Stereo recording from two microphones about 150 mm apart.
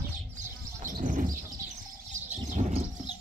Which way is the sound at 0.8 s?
60° right (ahead or behind).